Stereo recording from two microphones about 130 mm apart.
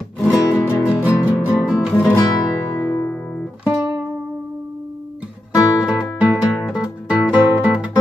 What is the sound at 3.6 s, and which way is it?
Music, 10° right (ahead or behind).